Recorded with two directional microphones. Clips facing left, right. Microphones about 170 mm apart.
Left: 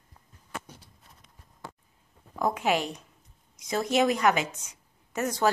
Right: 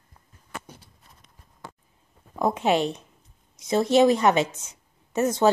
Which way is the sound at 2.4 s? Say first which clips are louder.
Right 4 dB; 25° right (ahead or behind).